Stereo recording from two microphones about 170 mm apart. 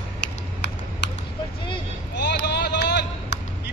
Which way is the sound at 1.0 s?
90° left.